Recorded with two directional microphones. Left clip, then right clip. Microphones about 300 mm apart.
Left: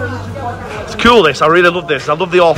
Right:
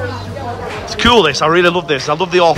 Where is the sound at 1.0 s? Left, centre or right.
Centre.